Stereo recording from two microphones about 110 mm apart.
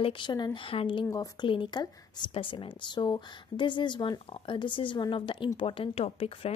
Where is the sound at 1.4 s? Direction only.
50° left (ahead or behind).